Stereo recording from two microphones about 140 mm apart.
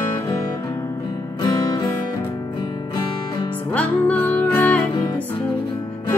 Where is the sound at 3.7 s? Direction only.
15° left (ahead or behind).